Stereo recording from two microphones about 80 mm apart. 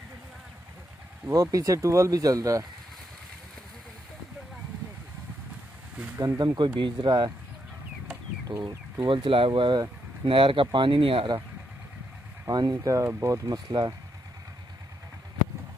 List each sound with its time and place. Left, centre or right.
1.3 s speech: right
6.1 s speech: right
8.6 s speech: right
12.4 s speech: right